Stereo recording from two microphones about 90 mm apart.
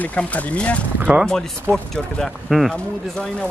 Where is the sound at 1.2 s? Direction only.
10° left (ahead or behind).